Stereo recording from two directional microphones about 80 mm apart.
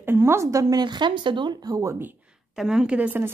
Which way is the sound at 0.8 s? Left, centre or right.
Right.